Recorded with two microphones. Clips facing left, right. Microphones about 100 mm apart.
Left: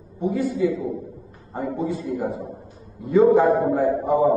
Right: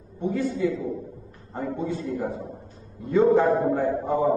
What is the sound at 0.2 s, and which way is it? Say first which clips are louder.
A man's voice: left 3 dB; 5° left (ahead or behind).